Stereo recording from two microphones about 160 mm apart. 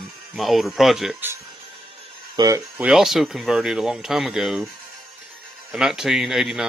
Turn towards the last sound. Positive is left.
turn(degrees=0)  # may be behind; listen again after turning